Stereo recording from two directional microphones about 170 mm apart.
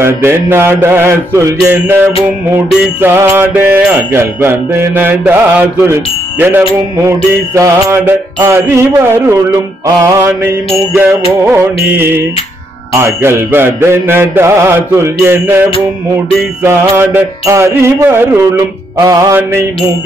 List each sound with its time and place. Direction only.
0.0 s music: 15° right (ahead or behind)
16.6 s music: 15° right (ahead or behind)